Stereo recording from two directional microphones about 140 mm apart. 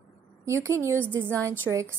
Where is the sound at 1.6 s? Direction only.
20° right (ahead or behind).